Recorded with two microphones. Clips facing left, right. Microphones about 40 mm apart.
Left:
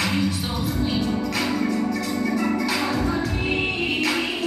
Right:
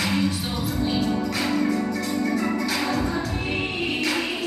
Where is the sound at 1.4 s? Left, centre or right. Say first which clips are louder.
Right 1 dB; centre.